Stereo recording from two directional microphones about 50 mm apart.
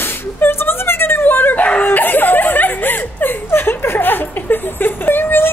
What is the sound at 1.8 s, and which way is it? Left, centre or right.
Snicker, left.